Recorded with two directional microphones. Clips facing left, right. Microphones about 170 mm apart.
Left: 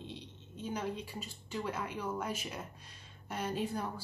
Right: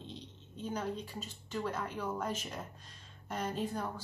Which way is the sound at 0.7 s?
10° left (ahead or behind).